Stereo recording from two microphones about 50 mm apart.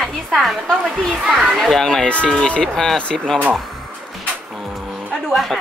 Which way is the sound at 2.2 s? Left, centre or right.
Centre.